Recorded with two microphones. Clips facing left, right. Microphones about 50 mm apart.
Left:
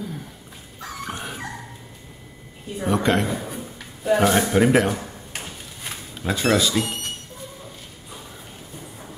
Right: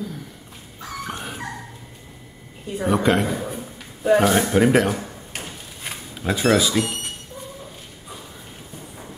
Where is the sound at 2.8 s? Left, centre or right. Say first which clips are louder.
Right 2 dB; centre.